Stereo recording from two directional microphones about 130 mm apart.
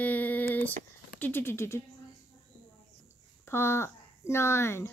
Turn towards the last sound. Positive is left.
turn(degrees=20)  # may be behind; listen again after turning